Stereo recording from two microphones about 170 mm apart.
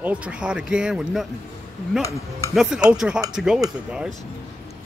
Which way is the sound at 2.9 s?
5° right (ahead or behind).